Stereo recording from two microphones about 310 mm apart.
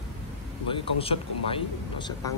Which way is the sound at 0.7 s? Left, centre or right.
Centre.